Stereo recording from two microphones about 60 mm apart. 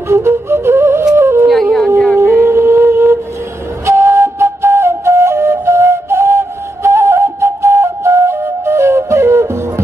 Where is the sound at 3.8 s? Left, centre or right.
Right.